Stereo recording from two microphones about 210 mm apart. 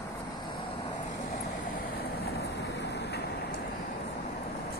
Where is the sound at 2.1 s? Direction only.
50° left (ahead or behind).